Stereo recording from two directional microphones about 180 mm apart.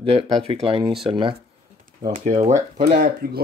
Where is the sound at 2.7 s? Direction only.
55° right (ahead or behind).